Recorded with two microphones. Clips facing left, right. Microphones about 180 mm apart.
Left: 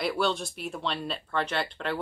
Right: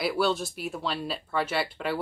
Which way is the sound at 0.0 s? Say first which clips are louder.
Right 2 dB; 5° right (ahead or behind).